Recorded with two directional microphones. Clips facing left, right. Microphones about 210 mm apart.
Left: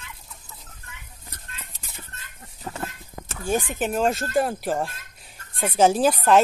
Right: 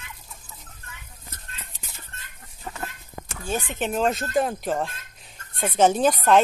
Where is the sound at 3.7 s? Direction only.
5° left (ahead or behind).